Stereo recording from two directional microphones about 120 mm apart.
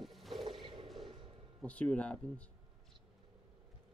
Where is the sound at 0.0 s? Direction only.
Centre (ahead or behind).